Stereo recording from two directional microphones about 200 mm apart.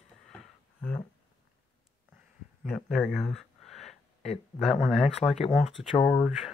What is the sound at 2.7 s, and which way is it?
Speech, centre (ahead or behind).